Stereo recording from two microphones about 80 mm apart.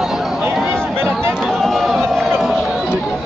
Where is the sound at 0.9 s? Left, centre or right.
Right.